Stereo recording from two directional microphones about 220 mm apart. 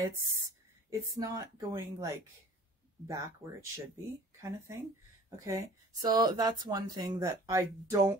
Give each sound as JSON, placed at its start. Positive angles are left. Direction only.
{"t": 0.8, "sound": "a woman's voice", "side_deg": -15}